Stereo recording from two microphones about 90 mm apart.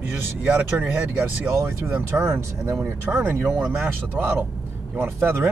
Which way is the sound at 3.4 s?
5° right (ahead or behind).